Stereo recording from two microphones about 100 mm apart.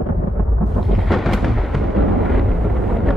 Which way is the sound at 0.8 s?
Centre (ahead or behind).